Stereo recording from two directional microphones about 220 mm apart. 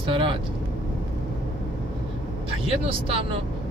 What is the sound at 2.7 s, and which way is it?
Speech, 25° right (ahead or behind).